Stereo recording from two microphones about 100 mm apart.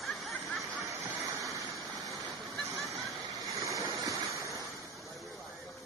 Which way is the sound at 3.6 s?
35° right (ahead or behind).